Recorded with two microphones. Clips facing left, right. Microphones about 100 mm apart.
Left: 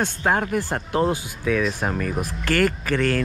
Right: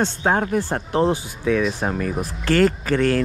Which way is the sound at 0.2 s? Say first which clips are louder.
Even; 35° right (ahead or behind).